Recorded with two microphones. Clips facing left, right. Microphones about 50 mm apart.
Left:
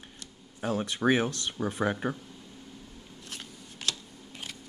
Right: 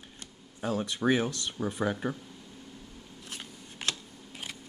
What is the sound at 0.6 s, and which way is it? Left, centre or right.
Speech, left.